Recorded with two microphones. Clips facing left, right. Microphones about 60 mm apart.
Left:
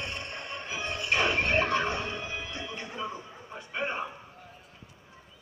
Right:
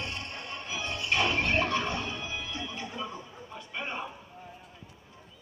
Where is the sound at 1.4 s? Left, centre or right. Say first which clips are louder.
Left 1 dB; centre.